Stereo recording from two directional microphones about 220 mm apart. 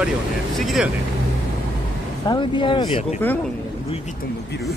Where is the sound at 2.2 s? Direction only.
20° left (ahead or behind).